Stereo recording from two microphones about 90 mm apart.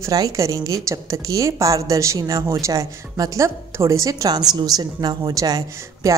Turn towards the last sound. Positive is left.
turn(degrees=-40)  # may be behind; listen again after turning